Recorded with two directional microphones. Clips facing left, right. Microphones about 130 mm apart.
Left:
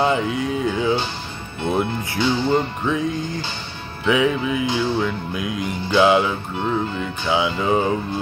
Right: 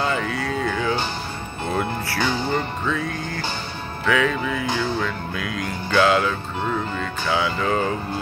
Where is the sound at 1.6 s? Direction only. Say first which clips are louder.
Left 3 dB; 20° left (ahead or behind).